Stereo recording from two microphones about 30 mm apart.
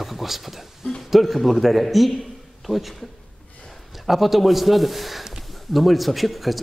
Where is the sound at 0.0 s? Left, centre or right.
Centre.